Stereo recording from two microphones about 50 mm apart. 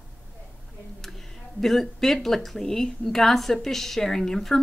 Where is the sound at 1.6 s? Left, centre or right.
Centre.